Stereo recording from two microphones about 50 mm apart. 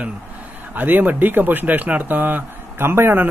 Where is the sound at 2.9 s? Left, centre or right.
Right.